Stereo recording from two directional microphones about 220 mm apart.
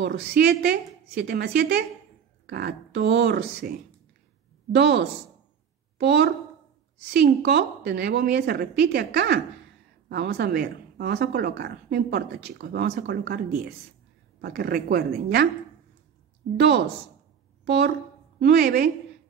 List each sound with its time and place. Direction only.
0.0 s a woman's voice: 50° right (ahead or behind)
4.7 s a woman's voice: 50° right (ahead or behind)
16.5 s a woman's voice: 45° right (ahead or behind)